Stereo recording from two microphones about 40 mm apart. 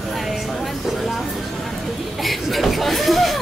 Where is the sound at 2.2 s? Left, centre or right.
Centre.